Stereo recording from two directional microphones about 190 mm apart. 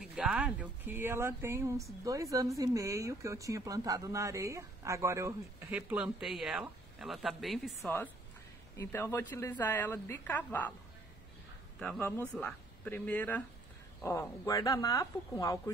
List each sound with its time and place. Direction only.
0.1 s a woman's voice: 5° right (ahead or behind)
8.7 s speech: 15° left (ahead or behind)
11.8 s speech: 5° left (ahead or behind)